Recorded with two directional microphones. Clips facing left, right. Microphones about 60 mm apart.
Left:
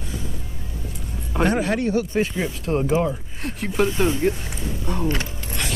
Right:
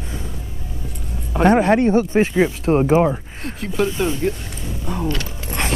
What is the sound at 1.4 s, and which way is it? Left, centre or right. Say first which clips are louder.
Speech: right 7 dB; right.